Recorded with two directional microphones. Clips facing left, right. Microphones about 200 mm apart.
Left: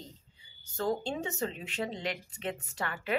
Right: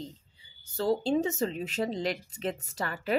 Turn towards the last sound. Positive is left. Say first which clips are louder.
# right 3 dB
turn(degrees=-35)  # may be behind; listen again after turning